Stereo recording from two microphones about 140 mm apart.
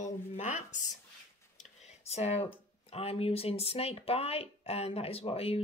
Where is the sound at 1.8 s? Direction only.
50° left (ahead or behind).